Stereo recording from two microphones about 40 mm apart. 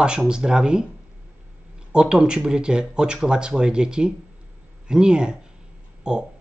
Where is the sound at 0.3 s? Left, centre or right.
Right.